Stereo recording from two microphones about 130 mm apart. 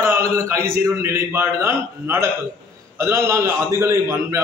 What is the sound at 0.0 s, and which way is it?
A man's voice, 20° right (ahead or behind).